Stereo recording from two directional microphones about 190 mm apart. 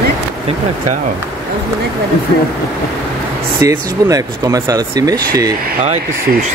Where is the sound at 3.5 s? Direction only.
15° right (ahead or behind).